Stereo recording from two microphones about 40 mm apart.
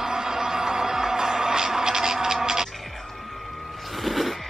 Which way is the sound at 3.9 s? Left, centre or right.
Centre.